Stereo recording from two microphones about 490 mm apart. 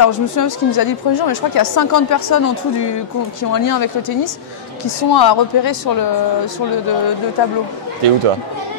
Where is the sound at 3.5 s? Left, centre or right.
Left.